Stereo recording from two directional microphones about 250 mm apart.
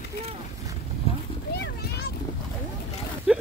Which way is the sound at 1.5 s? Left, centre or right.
Left.